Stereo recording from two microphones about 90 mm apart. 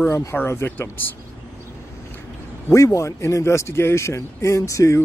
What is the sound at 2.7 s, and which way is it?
Speech, 35° left (ahead or behind).